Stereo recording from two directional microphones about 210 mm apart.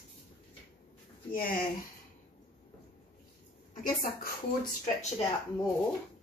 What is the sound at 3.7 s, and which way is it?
Speech, 40° left (ahead or behind).